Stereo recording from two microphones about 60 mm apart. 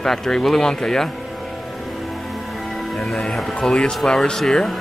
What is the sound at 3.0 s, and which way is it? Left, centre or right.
Speech, centre.